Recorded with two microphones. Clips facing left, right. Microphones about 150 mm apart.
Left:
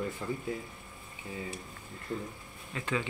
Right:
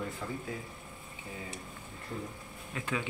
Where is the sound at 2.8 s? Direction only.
10° right (ahead or behind).